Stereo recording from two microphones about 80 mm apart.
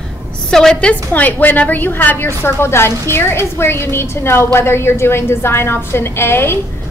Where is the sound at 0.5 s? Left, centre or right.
Centre.